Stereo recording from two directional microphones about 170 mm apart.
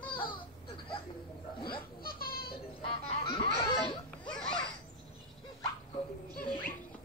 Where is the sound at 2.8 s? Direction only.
30° left (ahead or behind).